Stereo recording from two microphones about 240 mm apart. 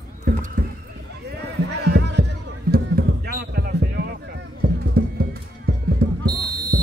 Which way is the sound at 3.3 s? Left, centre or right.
Right.